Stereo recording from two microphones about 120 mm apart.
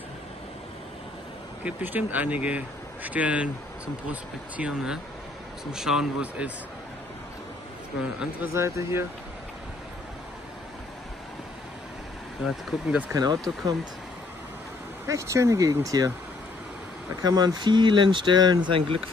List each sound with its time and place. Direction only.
1.6 s speech: 15° right (ahead or behind)
8.0 s speech: 5° right (ahead or behind)
8.5 s speech: 25° right (ahead or behind)
12.4 s speech: centre (ahead or behind)
13.1 s speech: 35° right (ahead or behind)
15.0 s speech: 25° right (ahead or behind)
17.2 s speech: 35° right (ahead or behind)